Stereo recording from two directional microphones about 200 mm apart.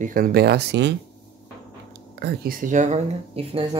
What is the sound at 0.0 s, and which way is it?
Speech, 45° right (ahead or behind).